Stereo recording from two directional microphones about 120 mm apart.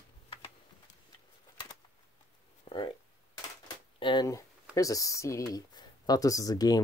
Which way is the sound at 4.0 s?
40° left (ahead or behind).